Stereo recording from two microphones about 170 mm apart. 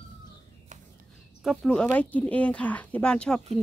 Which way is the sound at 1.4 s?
Centre (ahead or behind).